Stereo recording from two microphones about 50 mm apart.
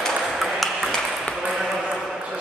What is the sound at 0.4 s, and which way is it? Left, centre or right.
Ping, centre.